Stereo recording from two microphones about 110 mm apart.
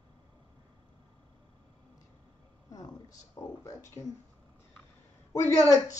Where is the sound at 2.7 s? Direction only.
30° left (ahead or behind).